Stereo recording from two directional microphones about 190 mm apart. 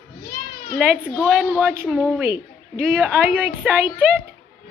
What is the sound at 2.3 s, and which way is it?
Speech, 50° right (ahead or behind).